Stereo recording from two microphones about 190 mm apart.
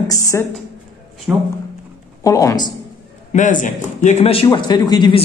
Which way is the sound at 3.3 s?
40° left (ahead or behind).